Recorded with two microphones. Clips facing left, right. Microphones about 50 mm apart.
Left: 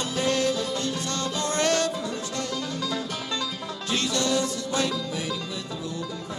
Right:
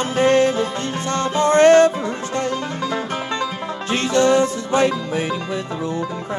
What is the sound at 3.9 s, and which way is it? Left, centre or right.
Music, right.